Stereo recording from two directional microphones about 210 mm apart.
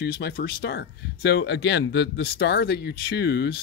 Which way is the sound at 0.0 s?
50° left (ahead or behind).